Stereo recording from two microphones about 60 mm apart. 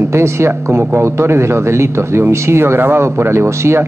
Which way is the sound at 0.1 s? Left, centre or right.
Right.